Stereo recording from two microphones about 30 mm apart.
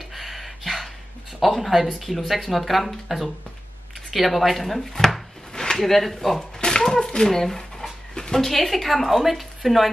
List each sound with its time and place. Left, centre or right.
0.1 s a sound: centre
1.4 s speech: centre
4.1 s chopping: centre
5.8 s speech: centre
7.0 s a sound: left
7.2 s a woman's voice: centre